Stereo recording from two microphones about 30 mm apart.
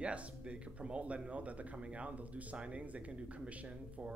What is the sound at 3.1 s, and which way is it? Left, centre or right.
Speech, right.